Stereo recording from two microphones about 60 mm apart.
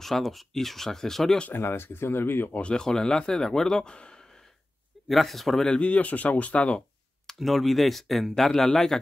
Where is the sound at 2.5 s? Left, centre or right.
Centre.